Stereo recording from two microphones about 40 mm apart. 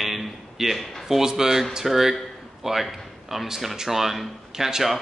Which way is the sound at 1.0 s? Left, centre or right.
Centre.